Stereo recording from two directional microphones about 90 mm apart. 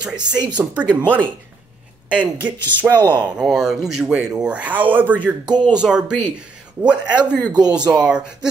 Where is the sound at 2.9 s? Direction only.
50° right (ahead or behind).